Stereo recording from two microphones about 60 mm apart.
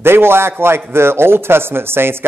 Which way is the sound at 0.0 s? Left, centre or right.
Right.